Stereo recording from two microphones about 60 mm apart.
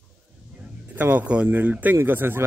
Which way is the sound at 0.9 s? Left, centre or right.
Right.